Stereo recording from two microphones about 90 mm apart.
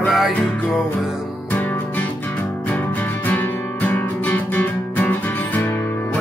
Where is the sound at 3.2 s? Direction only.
20° left (ahead or behind).